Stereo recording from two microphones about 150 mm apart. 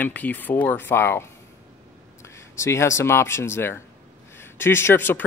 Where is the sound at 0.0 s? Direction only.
10° left (ahead or behind).